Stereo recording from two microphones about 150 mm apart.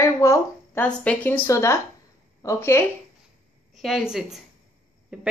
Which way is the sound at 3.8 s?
Centre (ahead or behind).